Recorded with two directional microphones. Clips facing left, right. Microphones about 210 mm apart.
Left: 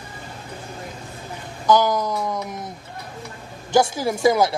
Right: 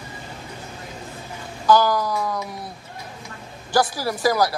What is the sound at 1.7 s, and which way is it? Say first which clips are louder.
Speech: even; 20° left (ahead or behind).